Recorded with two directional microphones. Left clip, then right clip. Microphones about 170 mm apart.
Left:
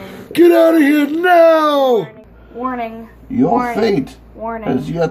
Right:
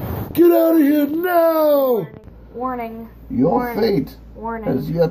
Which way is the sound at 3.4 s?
50° left (ahead or behind).